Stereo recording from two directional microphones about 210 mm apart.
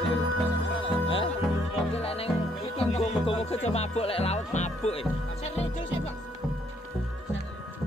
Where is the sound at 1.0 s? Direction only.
25° left (ahead or behind).